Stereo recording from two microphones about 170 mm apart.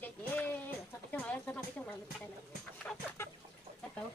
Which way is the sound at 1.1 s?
10° left (ahead or behind).